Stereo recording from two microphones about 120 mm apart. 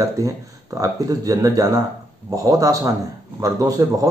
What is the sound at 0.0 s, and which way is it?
Speech, 30° right (ahead or behind).